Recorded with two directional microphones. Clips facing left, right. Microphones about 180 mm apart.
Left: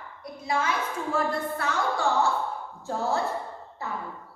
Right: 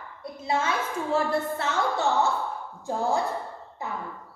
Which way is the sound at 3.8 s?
15° right (ahead or behind).